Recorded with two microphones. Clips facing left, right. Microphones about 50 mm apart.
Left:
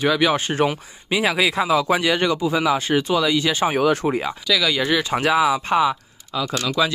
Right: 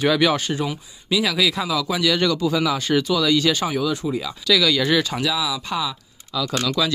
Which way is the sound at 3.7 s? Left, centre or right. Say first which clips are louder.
Left 4 dB; left.